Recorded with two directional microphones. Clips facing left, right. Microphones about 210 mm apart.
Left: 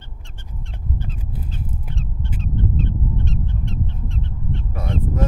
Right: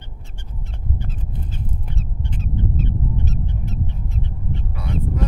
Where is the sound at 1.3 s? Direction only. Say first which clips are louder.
Even; 5° left (ahead or behind).